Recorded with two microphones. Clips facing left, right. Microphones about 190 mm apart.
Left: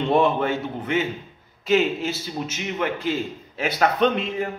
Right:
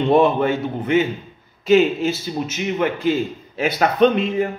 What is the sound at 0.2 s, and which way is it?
A man's voice, 15° right (ahead or behind).